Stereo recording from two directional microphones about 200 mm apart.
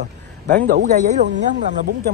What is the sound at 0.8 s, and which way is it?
Speech, 35° right (ahead or behind).